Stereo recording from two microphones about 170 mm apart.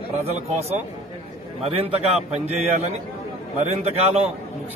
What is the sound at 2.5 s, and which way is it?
A man's voice, 45° right (ahead or behind).